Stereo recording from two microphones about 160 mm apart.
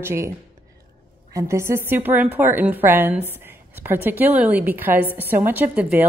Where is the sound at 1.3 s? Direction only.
20° right (ahead or behind).